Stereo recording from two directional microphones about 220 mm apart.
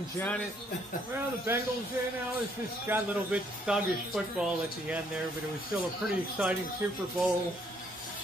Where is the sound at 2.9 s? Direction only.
5° right (ahead or behind).